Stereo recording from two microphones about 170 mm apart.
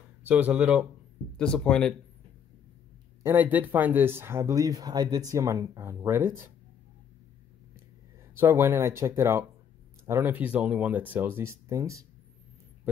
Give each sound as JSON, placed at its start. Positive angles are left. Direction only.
{"t": 0.2, "sound": "speech", "side_deg": -10}
{"t": 1.3, "sound": "speech", "side_deg": 5}
{"t": 3.2, "sound": "speech", "side_deg": -15}
{"t": 8.4, "sound": "speech", "side_deg": -15}